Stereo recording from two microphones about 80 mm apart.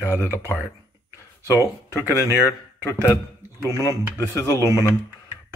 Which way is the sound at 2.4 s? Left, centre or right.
Left.